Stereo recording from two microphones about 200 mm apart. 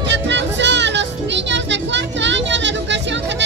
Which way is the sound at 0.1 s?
60° right (ahead or behind).